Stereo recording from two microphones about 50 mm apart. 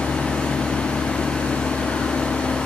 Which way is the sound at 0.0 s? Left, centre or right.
Centre.